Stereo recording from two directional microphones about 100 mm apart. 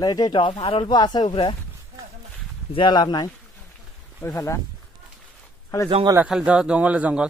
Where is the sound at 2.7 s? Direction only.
50° left (ahead or behind).